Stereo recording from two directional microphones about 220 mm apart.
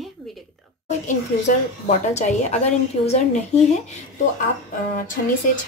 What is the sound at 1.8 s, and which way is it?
Speech, 30° left (ahead or behind).